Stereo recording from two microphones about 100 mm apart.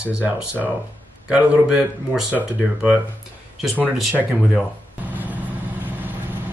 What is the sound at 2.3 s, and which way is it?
Speech, 5° right (ahead or behind).